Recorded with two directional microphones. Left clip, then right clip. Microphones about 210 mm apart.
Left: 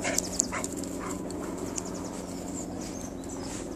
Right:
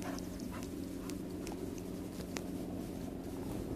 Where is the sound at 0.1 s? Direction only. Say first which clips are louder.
Left 13 dB; 45° left (ahead or behind).